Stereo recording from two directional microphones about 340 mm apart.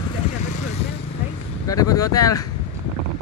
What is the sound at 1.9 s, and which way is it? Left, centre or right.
Speech, centre.